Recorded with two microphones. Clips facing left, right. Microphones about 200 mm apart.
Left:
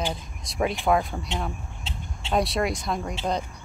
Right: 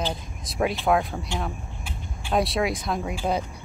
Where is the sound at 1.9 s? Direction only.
25° left (ahead or behind).